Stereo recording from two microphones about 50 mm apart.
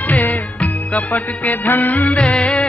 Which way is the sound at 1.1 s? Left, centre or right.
Left.